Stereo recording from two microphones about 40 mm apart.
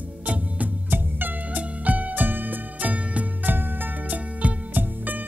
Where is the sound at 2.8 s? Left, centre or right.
Right.